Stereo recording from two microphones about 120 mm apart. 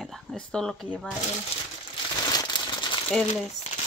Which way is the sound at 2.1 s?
35° left (ahead or behind).